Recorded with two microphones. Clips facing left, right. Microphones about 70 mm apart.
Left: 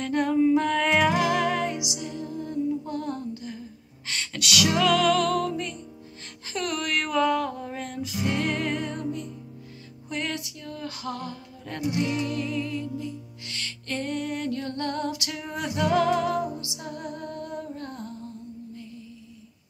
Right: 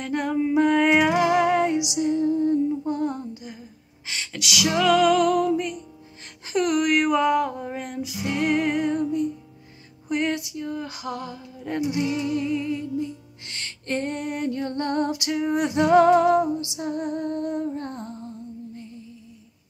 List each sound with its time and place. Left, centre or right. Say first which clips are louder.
0.0 s music: left 2 dB; centre
4.1 s music: left 1 dB; centre; by 18.3 s right